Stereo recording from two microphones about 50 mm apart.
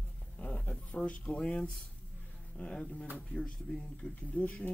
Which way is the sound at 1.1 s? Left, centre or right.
Left.